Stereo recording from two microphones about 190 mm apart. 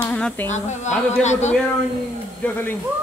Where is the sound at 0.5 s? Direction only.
40° left (ahead or behind).